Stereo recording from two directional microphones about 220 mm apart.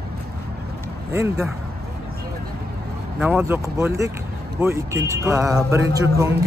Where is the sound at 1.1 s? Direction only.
10° right (ahead or behind).